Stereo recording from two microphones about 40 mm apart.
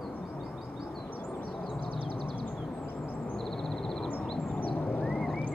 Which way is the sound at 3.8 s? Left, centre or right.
Centre.